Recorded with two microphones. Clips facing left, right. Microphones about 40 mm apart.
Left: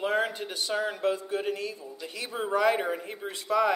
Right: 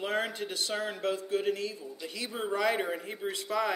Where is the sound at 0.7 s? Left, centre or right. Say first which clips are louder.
Left 4 dB; centre.